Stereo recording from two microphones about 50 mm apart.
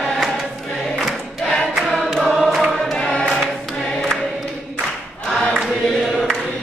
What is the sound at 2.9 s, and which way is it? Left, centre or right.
Choir, centre.